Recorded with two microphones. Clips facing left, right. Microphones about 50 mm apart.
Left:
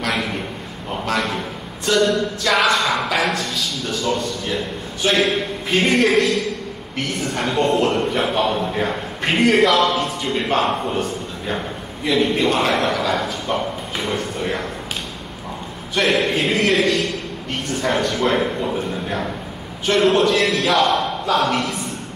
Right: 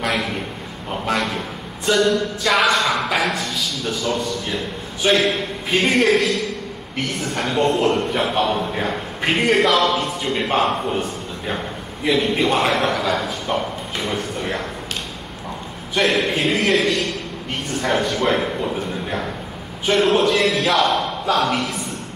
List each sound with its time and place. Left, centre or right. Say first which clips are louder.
2.0 s a man's voice: even; centre
15.9 s a man's voice: even; centre